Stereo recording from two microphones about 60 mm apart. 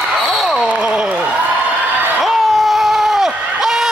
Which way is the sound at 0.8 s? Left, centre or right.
Centre.